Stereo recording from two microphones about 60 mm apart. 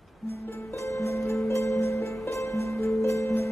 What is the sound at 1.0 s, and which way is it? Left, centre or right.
Music, left.